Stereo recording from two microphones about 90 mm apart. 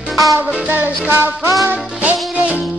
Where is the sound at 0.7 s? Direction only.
25° right (ahead or behind).